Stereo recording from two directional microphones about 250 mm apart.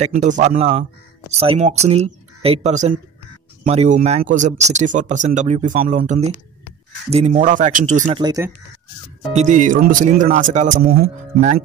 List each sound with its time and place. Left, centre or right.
0.0 s speech: right
8.2 s speech: centre
9.3 s speech: right